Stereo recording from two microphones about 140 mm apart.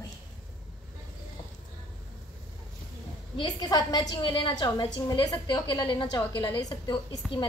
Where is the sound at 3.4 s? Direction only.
30° left (ahead or behind).